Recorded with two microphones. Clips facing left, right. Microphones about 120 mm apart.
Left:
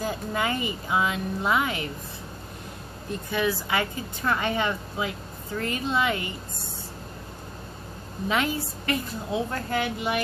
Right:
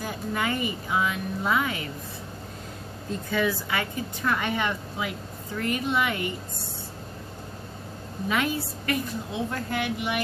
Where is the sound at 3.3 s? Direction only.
25° left (ahead or behind).